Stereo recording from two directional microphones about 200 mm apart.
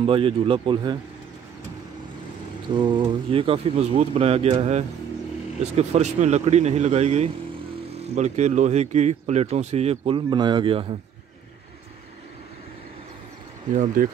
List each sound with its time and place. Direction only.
0.0 s speech: 25° right (ahead or behind)
2.7 s speech: 25° right (ahead or behind)
13.7 s speech: 45° right (ahead or behind)